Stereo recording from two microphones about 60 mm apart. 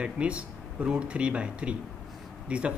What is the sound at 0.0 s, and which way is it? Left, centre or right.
Speech, centre.